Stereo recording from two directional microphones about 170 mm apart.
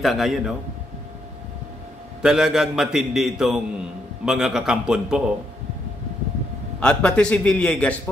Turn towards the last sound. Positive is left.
turn(degrees=5)  # may be behind; listen again after turning